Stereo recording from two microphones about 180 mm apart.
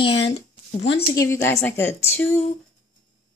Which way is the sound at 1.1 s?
15° left (ahead or behind).